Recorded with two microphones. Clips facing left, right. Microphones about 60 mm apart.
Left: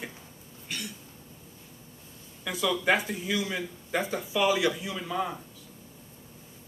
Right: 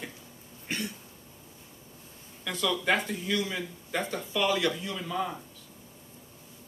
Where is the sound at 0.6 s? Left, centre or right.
Right.